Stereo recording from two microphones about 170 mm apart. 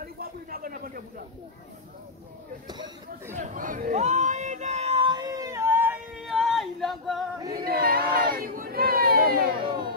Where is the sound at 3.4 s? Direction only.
50° right (ahead or behind); by 7.3 s centre (ahead or behind).